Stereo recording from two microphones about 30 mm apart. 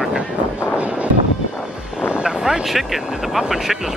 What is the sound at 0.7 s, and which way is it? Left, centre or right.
Music, right.